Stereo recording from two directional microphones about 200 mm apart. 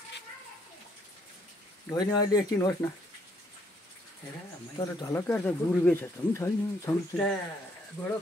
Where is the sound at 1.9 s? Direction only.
20° left (ahead or behind).